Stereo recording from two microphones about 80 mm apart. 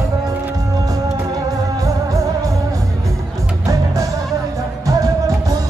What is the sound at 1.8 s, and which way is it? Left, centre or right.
Music, right.